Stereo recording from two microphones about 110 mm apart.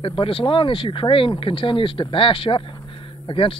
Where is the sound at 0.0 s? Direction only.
55° left (ahead or behind).